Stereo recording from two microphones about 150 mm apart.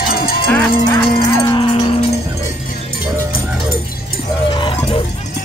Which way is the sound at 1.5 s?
30° left (ahead or behind).